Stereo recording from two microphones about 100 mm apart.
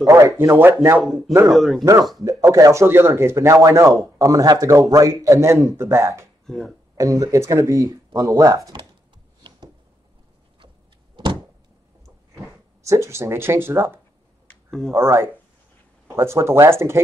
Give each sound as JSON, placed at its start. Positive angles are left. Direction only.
{"t": 0.0, "sound": "speech", "side_deg": -30}
{"t": 1.0, "sound": "speech", "side_deg": 0}
{"t": 2.2, "sound": "speech", "side_deg": -30}
{"t": 6.4, "sound": "speech", "side_deg": 5}
{"t": 7.0, "sound": "speech", "side_deg": -35}
{"t": 12.8, "sound": "speech", "side_deg": -30}